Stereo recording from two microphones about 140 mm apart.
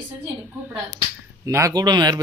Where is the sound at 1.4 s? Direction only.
25° right (ahead or behind).